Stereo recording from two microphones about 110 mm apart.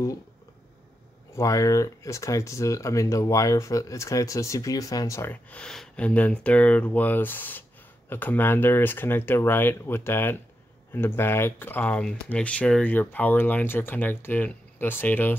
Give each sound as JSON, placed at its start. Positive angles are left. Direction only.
{"t": 1.3, "sound": "speech", "side_deg": 30}
{"t": 5.3, "sound": "speech", "side_deg": 10}